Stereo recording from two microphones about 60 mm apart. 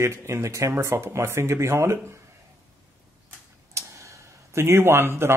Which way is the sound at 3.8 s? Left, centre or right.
Right.